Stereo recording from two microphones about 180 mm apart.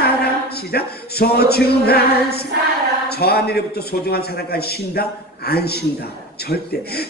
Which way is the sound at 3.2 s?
60° left (ahead or behind).